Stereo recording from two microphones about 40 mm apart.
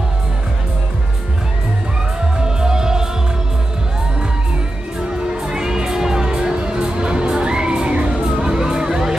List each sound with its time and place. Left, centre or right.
2.3 s music: centre
5.3 s music: centre